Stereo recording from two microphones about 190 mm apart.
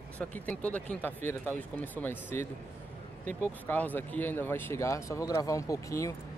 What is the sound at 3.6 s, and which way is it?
Speech, 10° left (ahead or behind).